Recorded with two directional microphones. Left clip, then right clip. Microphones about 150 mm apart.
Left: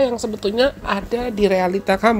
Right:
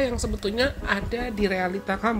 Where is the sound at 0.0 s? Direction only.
15° left (ahead or behind).